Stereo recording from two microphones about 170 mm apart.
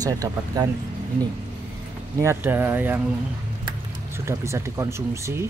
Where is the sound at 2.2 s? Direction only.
10° right (ahead or behind).